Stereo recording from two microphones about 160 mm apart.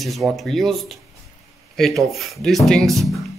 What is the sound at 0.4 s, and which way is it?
Speech, centre (ahead or behind).